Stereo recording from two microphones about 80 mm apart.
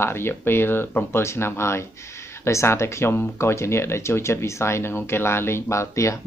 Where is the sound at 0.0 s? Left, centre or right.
Left.